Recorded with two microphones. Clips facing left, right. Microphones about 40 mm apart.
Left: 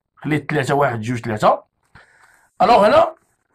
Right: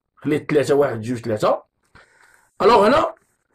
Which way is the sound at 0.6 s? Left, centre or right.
Left.